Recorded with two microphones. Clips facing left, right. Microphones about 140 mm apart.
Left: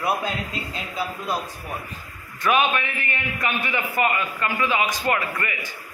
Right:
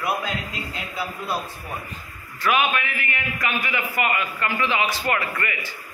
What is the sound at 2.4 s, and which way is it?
A man's voice, 20° left (ahead or behind).